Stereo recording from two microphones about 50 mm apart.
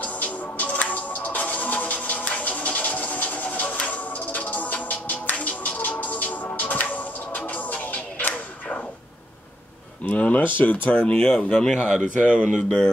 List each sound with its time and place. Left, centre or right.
0.0 s music: left
10.0 s speech: left
11.7 s speech: centre
12.2 s speech: left
12.6 s speech: centre